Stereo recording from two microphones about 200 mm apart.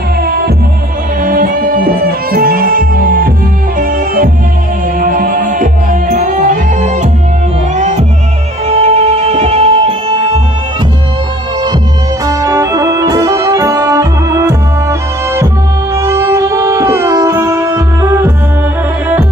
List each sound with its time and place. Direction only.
1.2 s music: 45° right (ahead or behind); by 10.4 s 30° right (ahead or behind)
12.3 s music: 15° right (ahead or behind)